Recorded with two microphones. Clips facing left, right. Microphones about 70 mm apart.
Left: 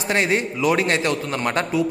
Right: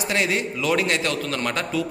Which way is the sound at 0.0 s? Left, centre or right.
Left.